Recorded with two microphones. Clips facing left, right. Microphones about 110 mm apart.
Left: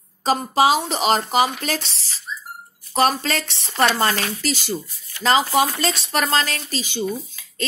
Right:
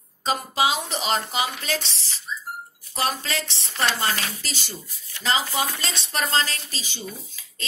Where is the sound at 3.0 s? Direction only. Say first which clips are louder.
Left 7 dB; 50° left (ahead or behind).